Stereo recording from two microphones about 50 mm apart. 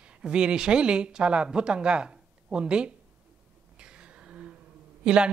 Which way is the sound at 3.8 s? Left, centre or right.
Centre.